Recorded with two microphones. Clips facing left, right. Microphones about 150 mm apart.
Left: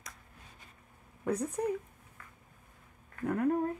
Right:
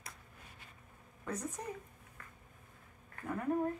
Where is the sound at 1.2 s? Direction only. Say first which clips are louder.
Left 8 dB; 60° left (ahead or behind).